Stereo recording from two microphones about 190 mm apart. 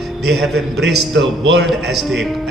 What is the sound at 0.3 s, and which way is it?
Speech, centre (ahead or behind).